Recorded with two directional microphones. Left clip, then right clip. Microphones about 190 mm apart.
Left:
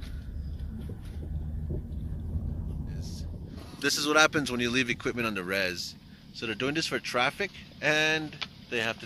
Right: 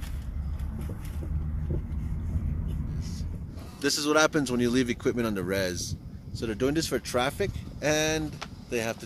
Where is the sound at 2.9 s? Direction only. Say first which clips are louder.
Right 2 dB; 20° right (ahead or behind).